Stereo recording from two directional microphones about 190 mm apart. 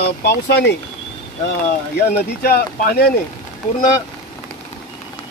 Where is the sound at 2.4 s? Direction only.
50° left (ahead or behind).